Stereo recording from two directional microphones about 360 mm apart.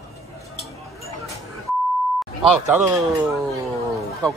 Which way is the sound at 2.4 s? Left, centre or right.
Centre.